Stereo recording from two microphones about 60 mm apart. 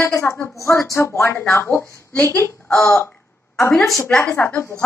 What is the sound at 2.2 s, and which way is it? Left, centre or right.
Speech, left.